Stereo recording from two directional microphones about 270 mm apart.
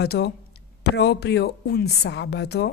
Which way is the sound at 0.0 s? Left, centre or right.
Left.